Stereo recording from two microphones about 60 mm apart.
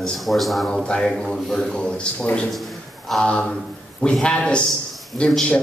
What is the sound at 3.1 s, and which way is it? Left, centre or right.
Speech, centre.